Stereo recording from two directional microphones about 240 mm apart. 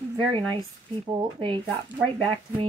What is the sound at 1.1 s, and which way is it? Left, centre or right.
Speech, right.